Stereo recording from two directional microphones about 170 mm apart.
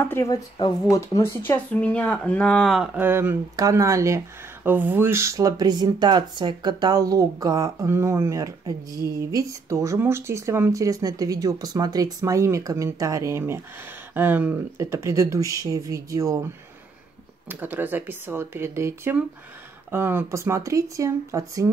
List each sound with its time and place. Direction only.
0.0 s speech: 15° left (ahead or behind); by 16.3 s 20° right (ahead or behind)
17.5 s speech: 10° right (ahead or behind)